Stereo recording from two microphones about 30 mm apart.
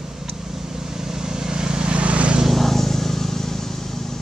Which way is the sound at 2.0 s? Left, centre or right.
Right.